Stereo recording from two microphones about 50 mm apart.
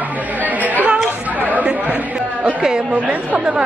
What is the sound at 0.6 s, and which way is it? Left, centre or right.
Chatter, right.